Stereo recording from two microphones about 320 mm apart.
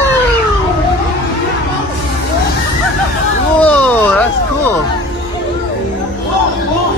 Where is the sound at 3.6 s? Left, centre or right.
Centre.